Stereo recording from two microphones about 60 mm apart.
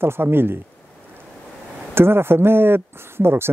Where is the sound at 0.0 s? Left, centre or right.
Right.